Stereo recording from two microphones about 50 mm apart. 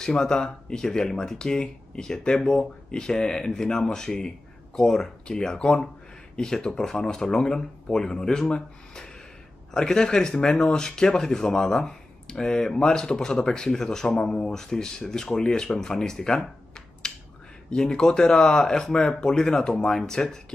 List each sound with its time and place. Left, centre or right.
0.0 s speech: centre